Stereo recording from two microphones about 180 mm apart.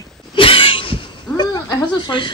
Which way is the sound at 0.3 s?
30° left (ahead or behind).